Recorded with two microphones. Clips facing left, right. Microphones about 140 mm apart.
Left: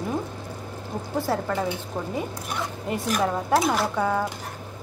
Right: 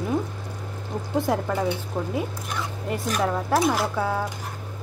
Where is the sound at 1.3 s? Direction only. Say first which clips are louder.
Right 1 dB; 15° right (ahead or behind).